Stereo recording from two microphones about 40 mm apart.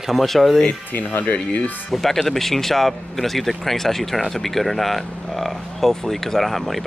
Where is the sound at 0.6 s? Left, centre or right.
Left.